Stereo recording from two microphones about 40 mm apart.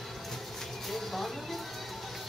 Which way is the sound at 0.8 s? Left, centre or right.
Centre.